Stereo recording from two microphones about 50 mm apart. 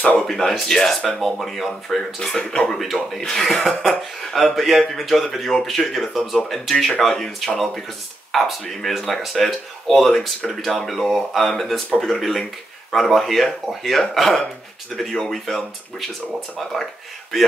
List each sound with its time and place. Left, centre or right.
0.3 s speech: centre
2.8 s speech: centre